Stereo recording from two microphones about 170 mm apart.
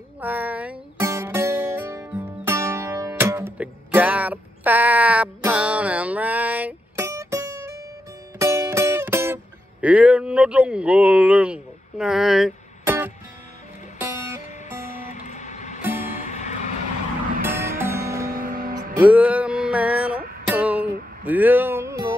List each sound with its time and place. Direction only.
0.2 s music: 10° right (ahead or behind)
15.0 s guitar: 45° left (ahead or behind)
16.1 s music: 45° left (ahead or behind)
17.5 s music: 15° right (ahead or behind)
18.3 s music: 50° right (ahead or behind)
18.9 s music: 10° right (ahead or behind)
20.2 s music: 60° right (ahead or behind)
20.4 s music: 10° right (ahead or behind)